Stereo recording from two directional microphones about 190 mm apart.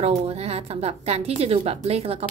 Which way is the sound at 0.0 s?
35° right (ahead or behind).